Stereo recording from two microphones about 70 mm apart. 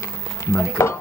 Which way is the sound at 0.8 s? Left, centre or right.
Left.